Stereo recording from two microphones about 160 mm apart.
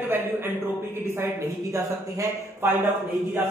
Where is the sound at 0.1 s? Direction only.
15° right (ahead or behind).